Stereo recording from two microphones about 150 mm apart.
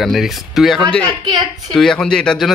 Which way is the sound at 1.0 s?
30° right (ahead or behind).